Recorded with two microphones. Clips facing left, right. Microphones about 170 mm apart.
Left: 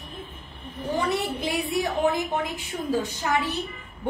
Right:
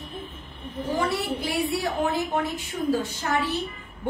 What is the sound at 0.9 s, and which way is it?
A woman's voice, 20° left (ahead or behind).